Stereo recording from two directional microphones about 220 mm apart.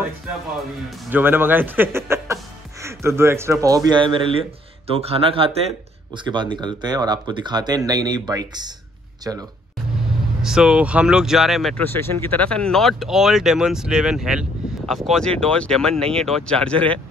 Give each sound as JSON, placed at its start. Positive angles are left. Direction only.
{"t": 0.8, "sound": "speech", "side_deg": -10}
{"t": 10.4, "sound": "speech", "side_deg": -5}